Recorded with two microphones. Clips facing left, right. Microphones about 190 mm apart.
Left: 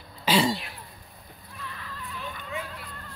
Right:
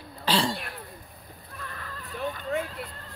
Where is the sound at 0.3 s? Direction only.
10° left (ahead or behind).